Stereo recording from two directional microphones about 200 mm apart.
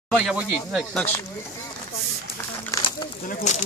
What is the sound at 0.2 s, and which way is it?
Speech, 5° right (ahead or behind).